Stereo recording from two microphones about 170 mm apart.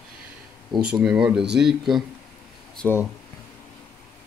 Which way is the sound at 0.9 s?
5° right (ahead or behind).